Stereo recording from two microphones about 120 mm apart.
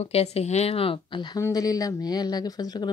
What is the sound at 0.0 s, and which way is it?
A woman's voice, 60° left (ahead or behind).